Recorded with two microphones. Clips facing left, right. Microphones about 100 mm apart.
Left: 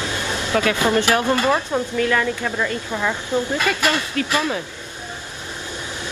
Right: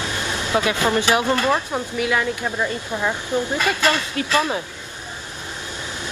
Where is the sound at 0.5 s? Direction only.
20° right (ahead or behind).